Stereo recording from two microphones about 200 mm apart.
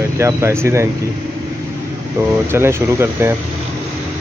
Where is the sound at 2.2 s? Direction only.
15° right (ahead or behind).